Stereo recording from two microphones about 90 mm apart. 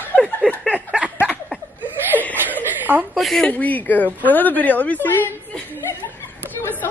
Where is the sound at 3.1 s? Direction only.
Centre (ahead or behind).